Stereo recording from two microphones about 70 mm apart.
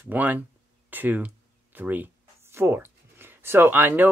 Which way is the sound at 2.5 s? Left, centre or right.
Right.